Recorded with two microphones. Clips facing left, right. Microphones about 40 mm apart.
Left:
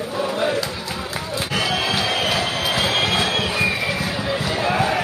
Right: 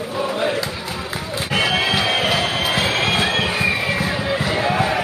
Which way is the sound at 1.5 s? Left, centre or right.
Right.